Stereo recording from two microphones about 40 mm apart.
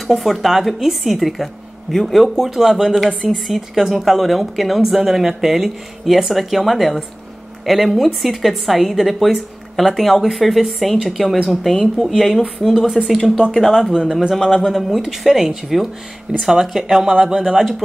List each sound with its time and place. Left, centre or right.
0.0 s a woman's voice: centre
1.9 s speech: centre
2.4 s a woman's voice: centre
13.2 s speech: centre
13.7 s speech: centre
14.3 s a woman's voice: centre